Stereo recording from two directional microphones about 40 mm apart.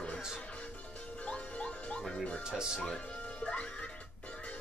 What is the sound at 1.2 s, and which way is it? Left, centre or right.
Music, left.